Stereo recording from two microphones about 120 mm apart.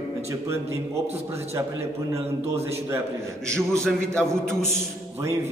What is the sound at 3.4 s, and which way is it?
Speech, 25° right (ahead or behind).